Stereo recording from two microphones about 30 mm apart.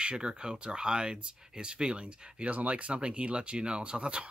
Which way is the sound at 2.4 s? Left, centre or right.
Right.